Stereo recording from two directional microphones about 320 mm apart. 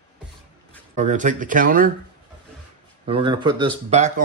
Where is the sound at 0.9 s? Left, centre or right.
Right.